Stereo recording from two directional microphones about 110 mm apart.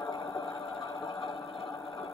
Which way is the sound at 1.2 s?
Centre (ahead or behind).